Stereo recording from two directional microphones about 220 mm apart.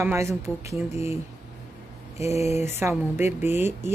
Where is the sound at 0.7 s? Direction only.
30° left (ahead or behind).